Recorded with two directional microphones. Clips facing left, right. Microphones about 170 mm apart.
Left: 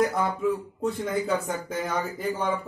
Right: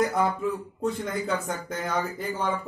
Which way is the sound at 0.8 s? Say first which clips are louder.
Left 2 dB; 5° left (ahead or behind).